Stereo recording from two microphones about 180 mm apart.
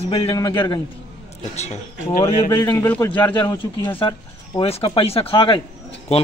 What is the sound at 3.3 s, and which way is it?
Speech, 25° left (ahead or behind).